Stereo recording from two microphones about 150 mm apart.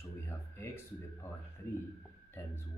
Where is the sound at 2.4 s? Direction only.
15° left (ahead or behind).